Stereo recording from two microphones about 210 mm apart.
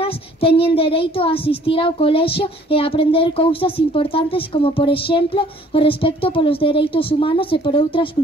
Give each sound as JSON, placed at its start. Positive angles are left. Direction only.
{"t": 0.0, "sound": "a child's voice", "side_deg": 25}